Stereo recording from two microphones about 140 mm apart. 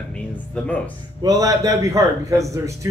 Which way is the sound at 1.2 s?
25° right (ahead or behind).